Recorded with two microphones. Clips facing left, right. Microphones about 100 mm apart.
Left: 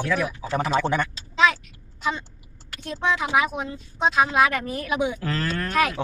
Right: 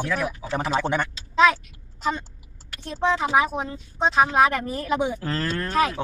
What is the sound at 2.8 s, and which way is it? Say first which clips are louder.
Speech: right 2 dB; 30° right (ahead or behind).